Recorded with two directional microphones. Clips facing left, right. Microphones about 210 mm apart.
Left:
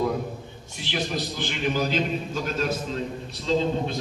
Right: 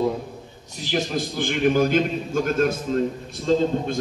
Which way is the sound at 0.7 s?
40° right (ahead or behind).